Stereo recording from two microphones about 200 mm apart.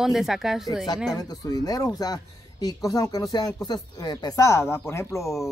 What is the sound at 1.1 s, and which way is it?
Speech, 20° left (ahead or behind).